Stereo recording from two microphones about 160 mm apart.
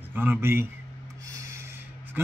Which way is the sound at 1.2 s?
15° right (ahead or behind).